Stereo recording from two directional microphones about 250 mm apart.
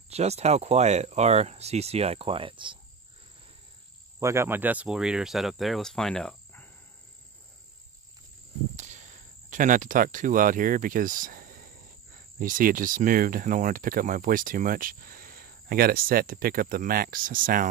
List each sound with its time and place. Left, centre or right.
0.1 s speech: right
4.2 s speech: centre
8.7 s speech: right